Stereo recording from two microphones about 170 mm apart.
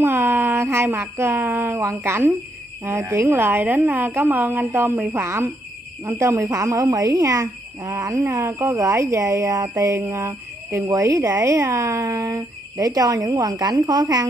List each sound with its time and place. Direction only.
0.0 s a woman's voice: 15° right (ahead or behind)